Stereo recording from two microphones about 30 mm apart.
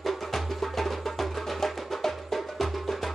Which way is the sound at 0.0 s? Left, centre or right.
Centre.